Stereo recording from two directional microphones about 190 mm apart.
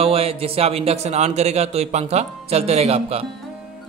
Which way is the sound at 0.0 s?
30° right (ahead or behind).